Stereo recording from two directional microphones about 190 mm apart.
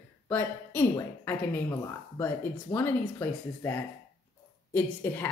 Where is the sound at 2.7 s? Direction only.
10° left (ahead or behind).